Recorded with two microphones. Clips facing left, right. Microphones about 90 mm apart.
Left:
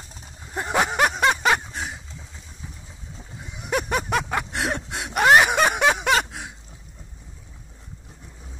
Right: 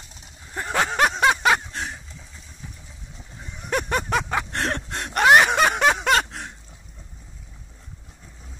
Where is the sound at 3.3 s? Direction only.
5° left (ahead or behind).